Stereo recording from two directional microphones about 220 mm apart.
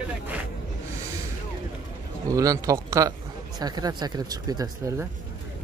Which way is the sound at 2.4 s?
15° right (ahead or behind).